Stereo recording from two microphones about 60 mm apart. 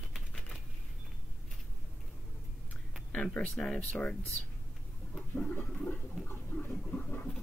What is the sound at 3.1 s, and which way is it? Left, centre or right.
Speech, centre.